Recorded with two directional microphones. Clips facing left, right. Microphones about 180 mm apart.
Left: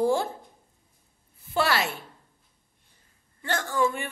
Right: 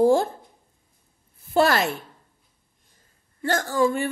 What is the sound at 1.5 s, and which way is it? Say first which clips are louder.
Speech: right 6 dB; 45° right (ahead or behind).